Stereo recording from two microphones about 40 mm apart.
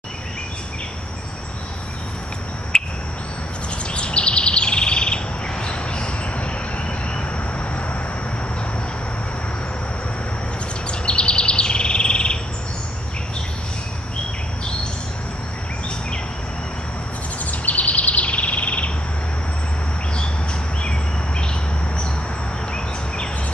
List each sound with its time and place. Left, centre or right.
2.7 s a sound: centre
3.8 s bird: left
10.9 s bird: left
17.5 s bird: left